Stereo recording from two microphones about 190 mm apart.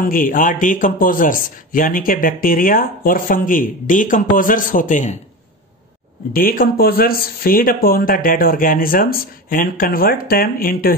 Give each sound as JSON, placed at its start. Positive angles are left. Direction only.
{"t": 0.0, "sound": "speech", "side_deg": 45}
{"t": 6.3, "sound": "speech", "side_deg": 50}